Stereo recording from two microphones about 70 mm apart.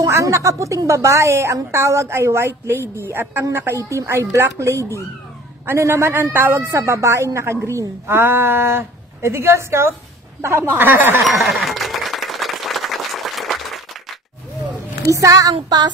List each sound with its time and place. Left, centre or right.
0.0 s a woman's voice: right
11.2 s applause: centre
15.0 s child singing: right